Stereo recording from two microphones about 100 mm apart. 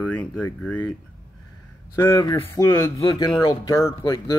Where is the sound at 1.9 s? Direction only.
35° left (ahead or behind).